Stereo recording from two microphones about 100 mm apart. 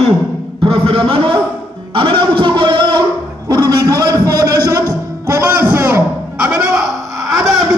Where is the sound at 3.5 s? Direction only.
45° right (ahead or behind).